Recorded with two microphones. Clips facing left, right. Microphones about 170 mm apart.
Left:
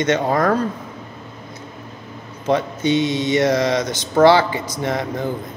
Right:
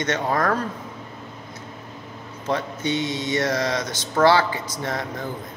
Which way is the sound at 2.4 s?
20° left (ahead or behind).